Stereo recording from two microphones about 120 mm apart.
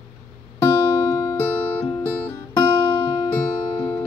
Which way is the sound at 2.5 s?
35° left (ahead or behind).